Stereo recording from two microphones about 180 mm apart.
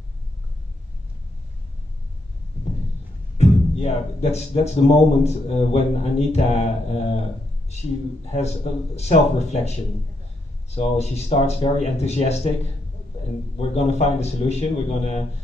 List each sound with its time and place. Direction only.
3.3 s speech: 35° left (ahead or behind)
8.3 s speech: 35° left (ahead or behind)
13.6 s speech: 35° left (ahead or behind)